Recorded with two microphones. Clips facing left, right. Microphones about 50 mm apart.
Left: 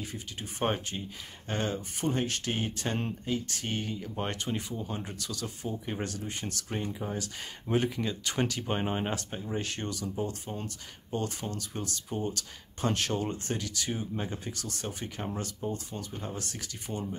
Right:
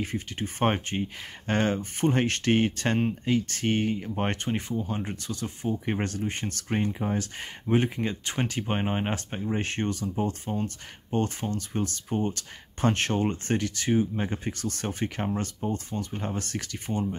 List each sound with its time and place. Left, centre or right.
0.0 s speech: right
5.9 s speech: right